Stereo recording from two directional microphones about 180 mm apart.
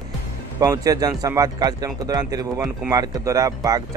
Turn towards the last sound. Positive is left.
turn(degrees=-20)  # may be behind; listen again after turning